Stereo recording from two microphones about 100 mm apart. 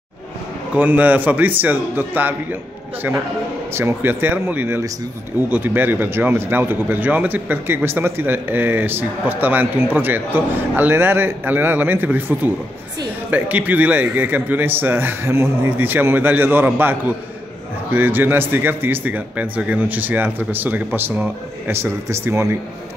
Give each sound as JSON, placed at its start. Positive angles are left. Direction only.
{"t": 0.7, "sound": "a man's voice", "side_deg": -15}
{"t": 3.7, "sound": "speech", "side_deg": -25}